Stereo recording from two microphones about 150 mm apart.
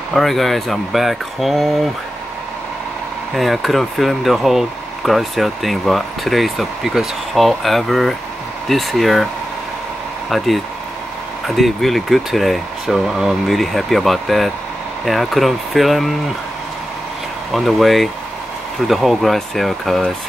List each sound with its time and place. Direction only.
0.1 s speech: centre (ahead or behind)
3.3 s speech: centre (ahead or behind)
10.3 s speech: centre (ahead or behind)
17.5 s speech: centre (ahead or behind)